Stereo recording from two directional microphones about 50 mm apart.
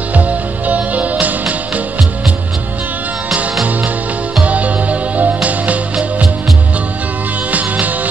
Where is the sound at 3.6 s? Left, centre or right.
Right.